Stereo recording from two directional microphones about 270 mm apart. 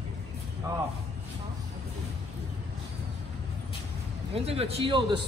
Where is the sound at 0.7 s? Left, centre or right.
Centre.